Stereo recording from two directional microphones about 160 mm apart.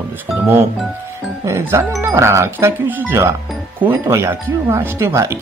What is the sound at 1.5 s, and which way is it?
Speech, 15° right (ahead or behind).